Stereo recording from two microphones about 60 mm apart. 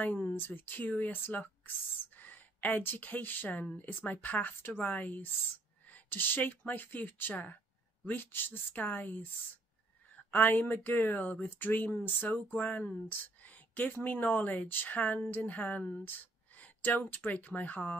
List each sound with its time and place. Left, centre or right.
0.2 s speech: left
10.3 s speech: left